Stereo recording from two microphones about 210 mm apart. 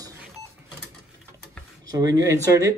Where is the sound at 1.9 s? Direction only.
15° right (ahead or behind).